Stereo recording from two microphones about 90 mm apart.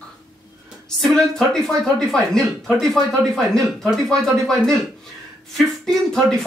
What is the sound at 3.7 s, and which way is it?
A woman's voice, 5° left (ahead or behind).